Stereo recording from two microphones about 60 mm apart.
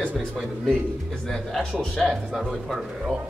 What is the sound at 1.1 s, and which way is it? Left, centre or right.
Speech, centre.